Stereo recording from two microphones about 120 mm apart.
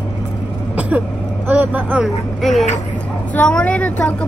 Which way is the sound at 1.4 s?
15° right (ahead or behind).